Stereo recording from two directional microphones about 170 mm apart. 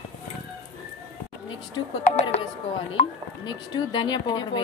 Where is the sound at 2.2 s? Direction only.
35° left (ahead or behind).